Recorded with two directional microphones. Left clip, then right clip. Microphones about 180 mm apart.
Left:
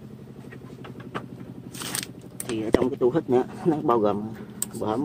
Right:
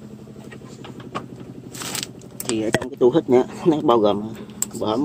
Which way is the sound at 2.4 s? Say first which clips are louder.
Right 1 dB; 20° right (ahead or behind).